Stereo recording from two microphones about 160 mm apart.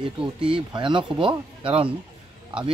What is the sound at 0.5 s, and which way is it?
Speech, 30° right (ahead or behind).